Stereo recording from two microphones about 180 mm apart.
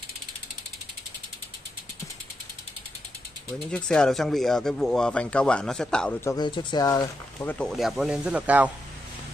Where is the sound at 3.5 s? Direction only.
5° left (ahead or behind).